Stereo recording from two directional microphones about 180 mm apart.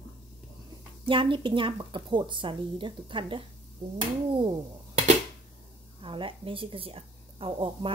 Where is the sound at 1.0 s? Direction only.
25° right (ahead or behind).